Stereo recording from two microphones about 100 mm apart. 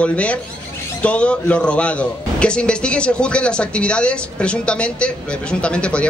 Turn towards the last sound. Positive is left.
turn(degrees=10)  # may be behind; listen again after turning